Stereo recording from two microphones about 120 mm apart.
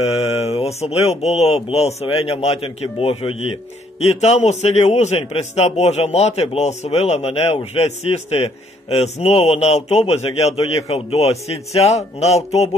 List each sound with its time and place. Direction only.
0.0 s a man's voice: 55° left (ahead or behind)